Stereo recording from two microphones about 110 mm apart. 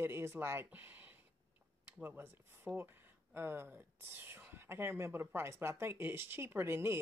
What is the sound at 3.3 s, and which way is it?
Speech, 20° right (ahead or behind).